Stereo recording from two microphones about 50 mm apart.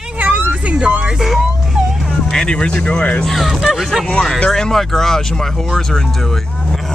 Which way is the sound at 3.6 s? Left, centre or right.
Centre.